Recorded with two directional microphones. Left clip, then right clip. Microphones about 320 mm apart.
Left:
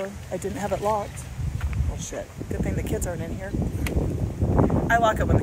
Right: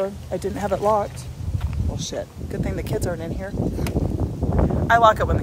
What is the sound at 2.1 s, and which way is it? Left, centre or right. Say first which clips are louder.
Speech: even; centre.